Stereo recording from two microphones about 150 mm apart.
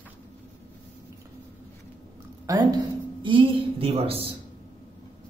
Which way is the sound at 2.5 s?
25° right (ahead or behind).